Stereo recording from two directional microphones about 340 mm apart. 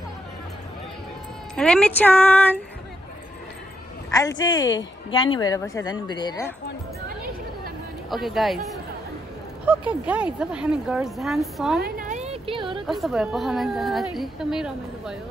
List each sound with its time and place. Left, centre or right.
1.5 s a woman's voice: centre
4.4 s a woman's voice: centre
8.1 s a woman's voice: centre
11.8 s a sound: right
12.8 s a woman's voice: centre